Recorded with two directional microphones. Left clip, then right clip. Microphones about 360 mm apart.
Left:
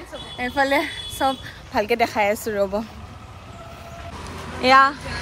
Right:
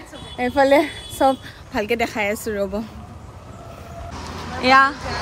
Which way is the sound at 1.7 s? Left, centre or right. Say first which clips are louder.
Left 2 dB; centre.